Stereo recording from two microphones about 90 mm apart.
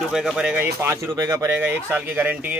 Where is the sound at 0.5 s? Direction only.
25° right (ahead or behind).